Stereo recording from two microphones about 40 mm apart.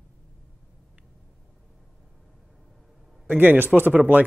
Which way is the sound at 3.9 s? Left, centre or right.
Right.